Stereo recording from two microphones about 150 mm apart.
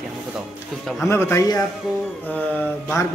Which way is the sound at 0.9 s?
15° left (ahead or behind).